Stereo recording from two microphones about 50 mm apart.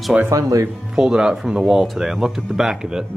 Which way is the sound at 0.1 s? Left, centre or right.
Right.